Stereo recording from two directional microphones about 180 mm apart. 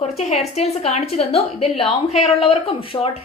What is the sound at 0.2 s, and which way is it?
A woman's voice, 35° left (ahead or behind).